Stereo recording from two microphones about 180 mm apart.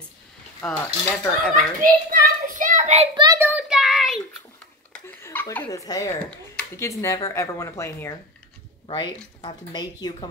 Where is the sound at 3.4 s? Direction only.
5° right (ahead or behind).